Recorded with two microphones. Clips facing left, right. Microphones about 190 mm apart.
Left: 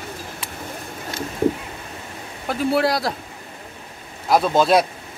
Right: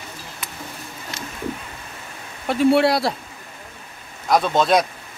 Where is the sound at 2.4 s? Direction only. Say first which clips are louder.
Right 4 dB; centre (ahead or behind).